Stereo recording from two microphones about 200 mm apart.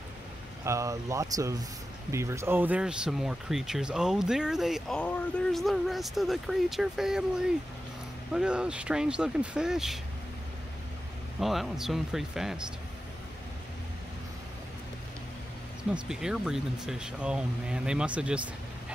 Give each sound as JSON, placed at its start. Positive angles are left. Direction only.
{"t": 0.7, "sound": "speech", "side_deg": -15}
{"t": 11.3, "sound": "speech", "side_deg": 0}
{"t": 15.9, "sound": "speech", "side_deg": -5}